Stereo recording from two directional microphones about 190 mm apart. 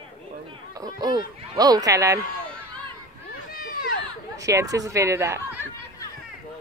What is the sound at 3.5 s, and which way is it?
Children playing, 50° left (ahead or behind).